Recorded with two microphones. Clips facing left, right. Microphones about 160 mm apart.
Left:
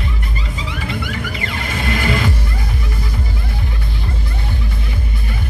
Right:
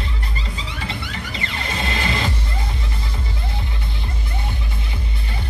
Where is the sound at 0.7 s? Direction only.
30° right (ahead or behind).